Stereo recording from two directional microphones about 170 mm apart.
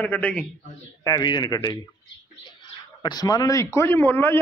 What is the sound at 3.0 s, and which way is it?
Speech, 25° left (ahead or behind).